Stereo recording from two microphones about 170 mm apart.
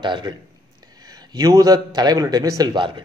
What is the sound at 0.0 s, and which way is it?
Speech, 25° right (ahead or behind).